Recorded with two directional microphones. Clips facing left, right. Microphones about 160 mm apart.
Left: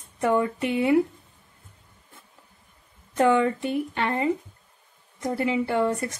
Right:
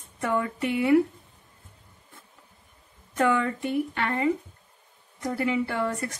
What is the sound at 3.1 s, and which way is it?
A woman's voice, 25° left (ahead or behind).